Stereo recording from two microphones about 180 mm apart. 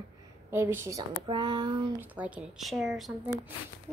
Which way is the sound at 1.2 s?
25° right (ahead or behind).